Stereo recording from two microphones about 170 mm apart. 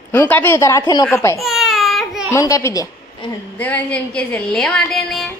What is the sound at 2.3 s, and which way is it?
Speech, 20° left (ahead or behind).